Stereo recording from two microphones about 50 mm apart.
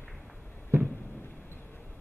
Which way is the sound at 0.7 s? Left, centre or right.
Right.